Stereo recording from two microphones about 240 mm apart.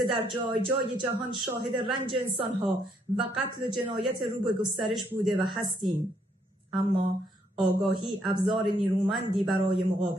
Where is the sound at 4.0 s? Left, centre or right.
Centre.